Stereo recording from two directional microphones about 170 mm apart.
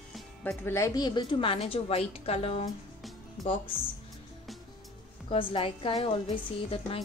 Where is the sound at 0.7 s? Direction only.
15° left (ahead or behind); by 2.7 s 35° left (ahead or behind).